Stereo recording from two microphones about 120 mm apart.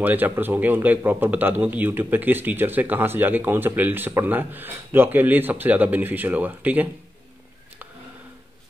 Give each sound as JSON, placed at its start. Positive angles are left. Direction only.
{"t": 0.0, "sound": "a man's voice", "side_deg": -15}